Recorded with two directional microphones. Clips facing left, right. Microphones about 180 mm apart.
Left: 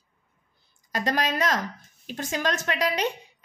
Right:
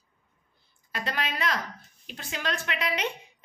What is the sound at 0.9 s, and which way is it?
A woman's voice, 40° left (ahead or behind).